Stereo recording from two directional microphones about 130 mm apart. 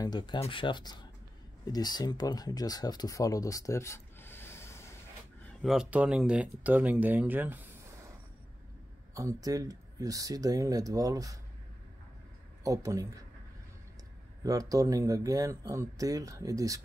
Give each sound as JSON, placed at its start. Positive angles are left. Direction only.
{"t": 0.0, "sound": "speech", "side_deg": 35}
{"t": 5.6, "sound": "speech", "side_deg": 0}
{"t": 9.1, "sound": "speech", "side_deg": -25}
{"t": 12.6, "sound": "speech", "side_deg": -25}
{"t": 14.4, "sound": "speech", "side_deg": -25}